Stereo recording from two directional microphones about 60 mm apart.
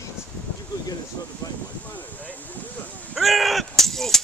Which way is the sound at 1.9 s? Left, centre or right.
Left.